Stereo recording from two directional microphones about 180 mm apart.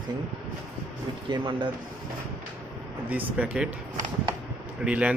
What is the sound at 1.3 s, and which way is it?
Speech, 30° right (ahead or behind).